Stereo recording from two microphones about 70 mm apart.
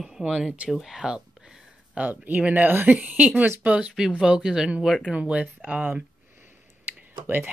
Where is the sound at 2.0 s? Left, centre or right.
Right.